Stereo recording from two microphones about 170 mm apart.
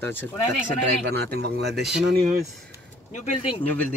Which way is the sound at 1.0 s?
75° right (ahead or behind).